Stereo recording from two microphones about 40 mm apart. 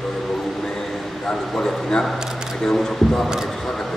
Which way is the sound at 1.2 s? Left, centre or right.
Centre.